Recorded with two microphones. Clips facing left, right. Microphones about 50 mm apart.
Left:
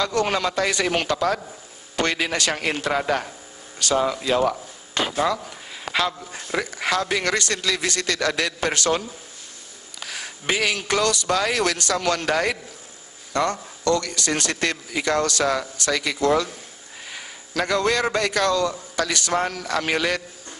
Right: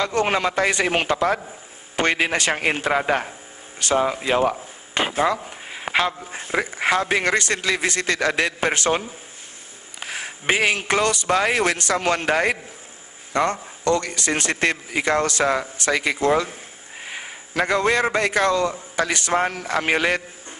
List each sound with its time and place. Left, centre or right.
0.0 s a man's voice: right